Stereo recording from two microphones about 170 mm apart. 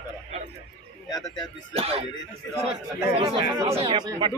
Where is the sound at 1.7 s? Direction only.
35° right (ahead or behind).